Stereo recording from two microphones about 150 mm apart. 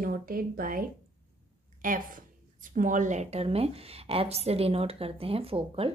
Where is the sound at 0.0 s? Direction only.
70° right (ahead or behind).